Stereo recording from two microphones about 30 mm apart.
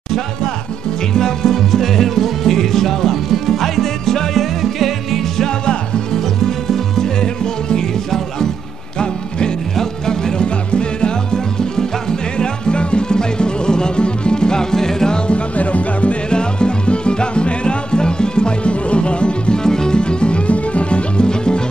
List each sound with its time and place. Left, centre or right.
1.1 s music: centre
6.1 s music: centre
9.8 s music: centre
10.4 s music: left
15.2 s music: left
16.3 s music: left
19.6 s music: left
21.2 s music: left